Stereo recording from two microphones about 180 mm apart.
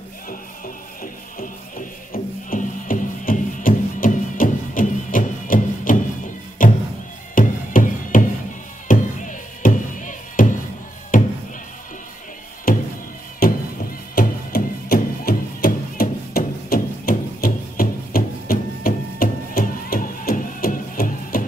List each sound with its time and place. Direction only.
1.0 s music: 50° left (ahead or behind)
11.1 s a sound: 50° left (ahead or behind)
12.7 s music: 55° left (ahead or behind)